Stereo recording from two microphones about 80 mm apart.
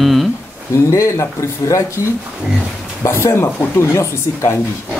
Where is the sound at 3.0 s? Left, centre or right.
Left.